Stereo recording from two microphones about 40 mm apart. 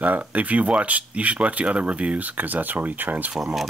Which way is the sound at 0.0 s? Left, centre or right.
Right.